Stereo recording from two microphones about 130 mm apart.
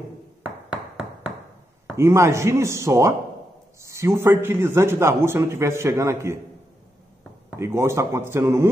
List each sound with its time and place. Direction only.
0.7 s a sound: 10° right (ahead or behind)
2.0 s a man's voice: 20° right (ahead or behind)
7.5 s a man's voice: 20° right (ahead or behind)